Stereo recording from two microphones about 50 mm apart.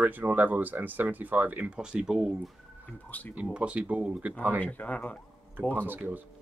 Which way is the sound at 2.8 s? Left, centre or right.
Left.